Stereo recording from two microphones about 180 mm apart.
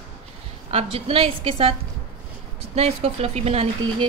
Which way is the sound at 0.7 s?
35° right (ahead or behind).